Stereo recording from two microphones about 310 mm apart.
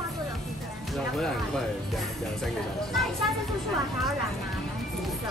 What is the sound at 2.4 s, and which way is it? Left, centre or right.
Speech, centre.